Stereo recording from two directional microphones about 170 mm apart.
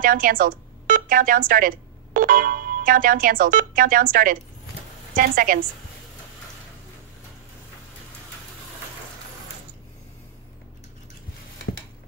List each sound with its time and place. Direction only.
0.0 s a woman's voice: 55° right (ahead or behind)